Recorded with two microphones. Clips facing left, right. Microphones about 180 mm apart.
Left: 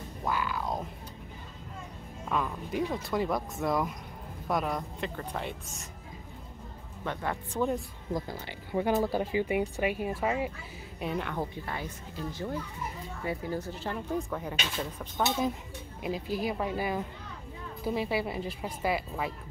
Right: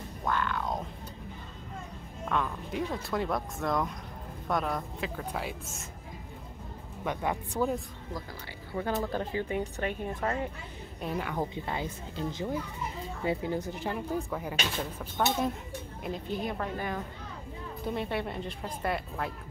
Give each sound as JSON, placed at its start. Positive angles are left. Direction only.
{"t": 0.2, "sound": "music", "side_deg": 5}
{"t": 2.2, "sound": "speech", "side_deg": 5}
{"t": 7.1, "sound": "speech", "side_deg": -15}
{"t": 8.1, "sound": "speech", "side_deg": 20}
{"t": 11.3, "sound": "a woman's voice", "side_deg": -20}